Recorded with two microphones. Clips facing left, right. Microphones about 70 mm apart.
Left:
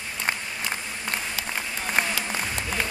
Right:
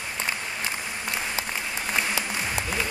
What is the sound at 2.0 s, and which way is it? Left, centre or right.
Applause, left.